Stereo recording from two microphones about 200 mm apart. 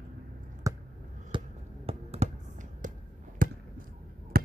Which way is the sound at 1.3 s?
25° right (ahead or behind).